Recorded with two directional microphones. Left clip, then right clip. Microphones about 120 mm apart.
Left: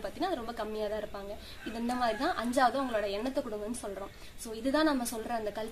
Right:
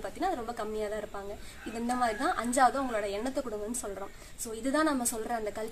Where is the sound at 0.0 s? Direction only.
10° left (ahead or behind).